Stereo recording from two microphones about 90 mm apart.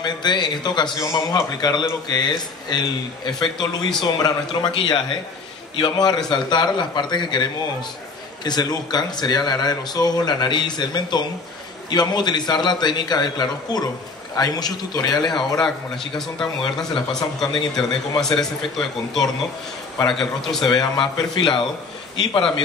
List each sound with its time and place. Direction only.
0.0 s speech: 55° left (ahead or behind)
8.5 s speech: 50° left (ahead or behind)
15.3 s a man's voice: 5° left (ahead or behind)
17.6 s speech: 60° left (ahead or behind)
18.4 s a man's voice: 5° left (ahead or behind)
21.2 s speech: 50° left (ahead or behind)